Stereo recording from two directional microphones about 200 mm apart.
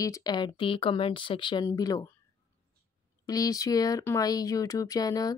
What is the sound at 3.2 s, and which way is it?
Speech, 15° left (ahead or behind).